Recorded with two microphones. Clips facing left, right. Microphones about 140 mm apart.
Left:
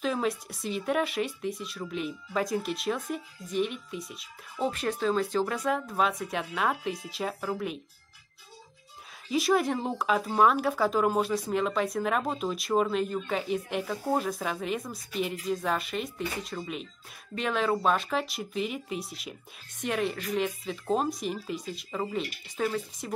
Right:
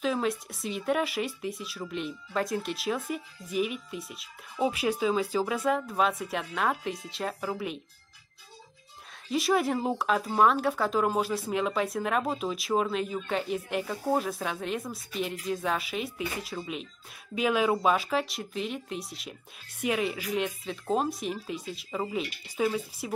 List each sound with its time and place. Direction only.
0.0 s speech: centre (ahead or behind)
9.3 s speech: centre (ahead or behind)